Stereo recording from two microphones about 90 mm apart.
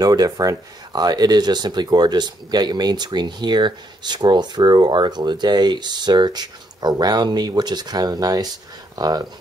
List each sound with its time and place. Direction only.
0.0 s speech: 45° right (ahead or behind)